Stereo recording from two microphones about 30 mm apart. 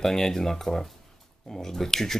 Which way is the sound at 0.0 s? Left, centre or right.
Centre.